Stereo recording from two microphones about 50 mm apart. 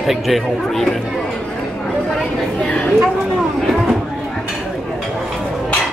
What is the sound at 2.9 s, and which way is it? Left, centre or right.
Speech, centre.